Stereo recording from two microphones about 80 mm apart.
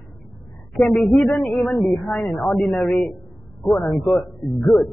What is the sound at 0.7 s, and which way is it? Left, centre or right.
A man's voice, centre.